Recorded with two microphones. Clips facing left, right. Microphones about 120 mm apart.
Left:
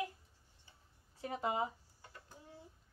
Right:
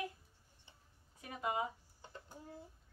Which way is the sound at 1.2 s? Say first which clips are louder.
Left 2 dB; 30° left (ahead or behind).